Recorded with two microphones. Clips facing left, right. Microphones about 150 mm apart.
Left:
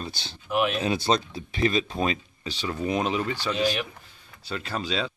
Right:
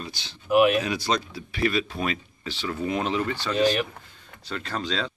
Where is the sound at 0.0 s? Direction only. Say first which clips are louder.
Left 2 dB; 30° left (ahead or behind); by 5.1 s 10° left (ahead or behind).